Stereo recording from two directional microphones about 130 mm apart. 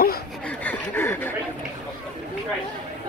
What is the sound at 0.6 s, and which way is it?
Chuckle, 15° left (ahead or behind).